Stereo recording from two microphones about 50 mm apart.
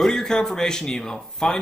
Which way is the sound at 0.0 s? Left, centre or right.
Centre.